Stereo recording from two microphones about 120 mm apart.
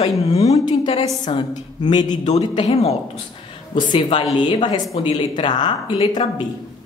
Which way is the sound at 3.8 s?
45° left (ahead or behind).